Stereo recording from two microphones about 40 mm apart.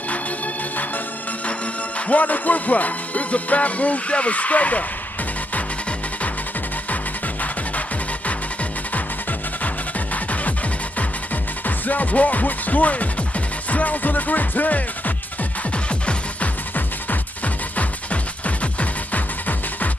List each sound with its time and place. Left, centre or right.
2.0 s music: left
10.1 s music: left
11.6 s speech: left
17.7 s music: left